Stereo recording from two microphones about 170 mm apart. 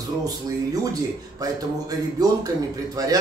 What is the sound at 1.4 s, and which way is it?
Speech, 20° right (ahead or behind).